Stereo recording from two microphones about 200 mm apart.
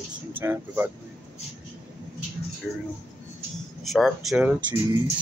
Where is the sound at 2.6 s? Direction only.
Centre (ahead or behind).